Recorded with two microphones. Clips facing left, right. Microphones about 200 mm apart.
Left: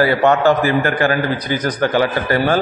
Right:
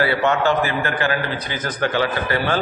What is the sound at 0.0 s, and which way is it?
A man's voice, 45° left (ahead or behind).